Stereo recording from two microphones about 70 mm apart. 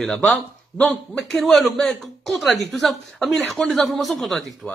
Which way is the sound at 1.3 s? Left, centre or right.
Centre.